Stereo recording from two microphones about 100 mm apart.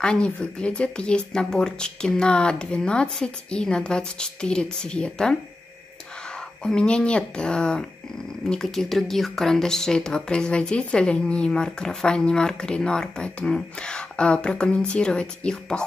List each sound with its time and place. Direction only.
0.0 s speech: 10° left (ahead or behind)
6.6 s speech: 10° left (ahead or behind)